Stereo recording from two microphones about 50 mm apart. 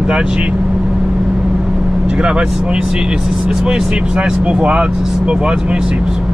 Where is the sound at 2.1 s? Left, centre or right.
Centre.